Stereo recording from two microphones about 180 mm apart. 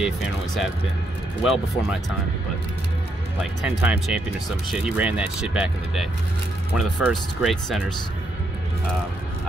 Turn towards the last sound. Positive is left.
turn(degrees=0)  # may be behind; listen again after turning